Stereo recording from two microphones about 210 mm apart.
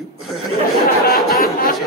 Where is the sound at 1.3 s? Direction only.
45° left (ahead or behind).